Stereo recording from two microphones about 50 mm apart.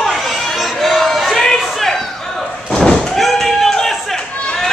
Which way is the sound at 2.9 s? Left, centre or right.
Centre.